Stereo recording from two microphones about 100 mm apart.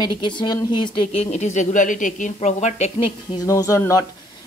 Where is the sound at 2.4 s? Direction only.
90° left.